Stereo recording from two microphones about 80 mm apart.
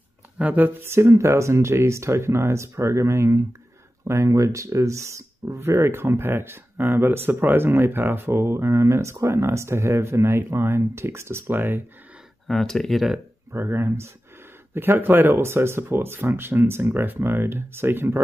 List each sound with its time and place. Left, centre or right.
0.4 s speech: right
12.4 s speech: centre
13.5 s speech: right